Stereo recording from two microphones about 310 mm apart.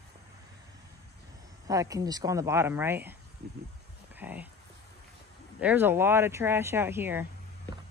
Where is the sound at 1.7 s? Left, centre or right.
Centre.